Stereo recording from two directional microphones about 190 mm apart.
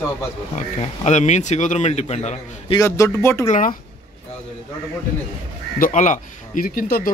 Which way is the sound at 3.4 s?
40° left (ahead or behind).